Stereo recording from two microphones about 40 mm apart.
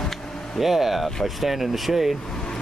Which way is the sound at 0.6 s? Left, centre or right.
Centre.